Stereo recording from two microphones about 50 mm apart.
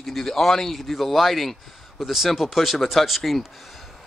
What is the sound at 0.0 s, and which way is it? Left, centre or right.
Speech, centre.